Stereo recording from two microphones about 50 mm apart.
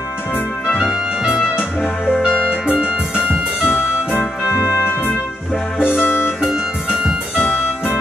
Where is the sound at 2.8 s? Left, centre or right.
Centre.